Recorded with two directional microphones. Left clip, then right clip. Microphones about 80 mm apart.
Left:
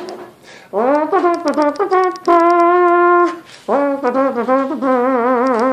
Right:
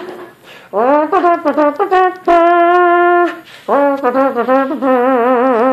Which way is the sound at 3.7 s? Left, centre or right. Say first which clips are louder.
Right 3 dB; centre.